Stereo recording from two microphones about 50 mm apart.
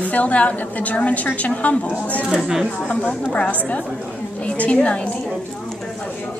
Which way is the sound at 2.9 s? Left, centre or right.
Left.